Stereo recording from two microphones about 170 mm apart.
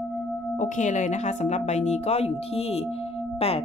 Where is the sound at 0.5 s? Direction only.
45° left (ahead or behind).